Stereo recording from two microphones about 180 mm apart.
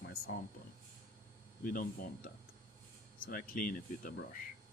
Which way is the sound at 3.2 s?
55° left (ahead or behind).